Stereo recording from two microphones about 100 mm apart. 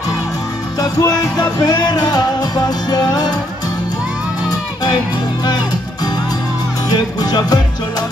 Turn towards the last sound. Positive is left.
turn(degrees=40)  # may be behind; listen again after turning